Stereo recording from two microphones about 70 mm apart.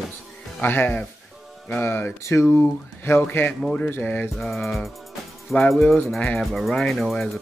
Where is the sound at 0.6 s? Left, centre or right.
Left.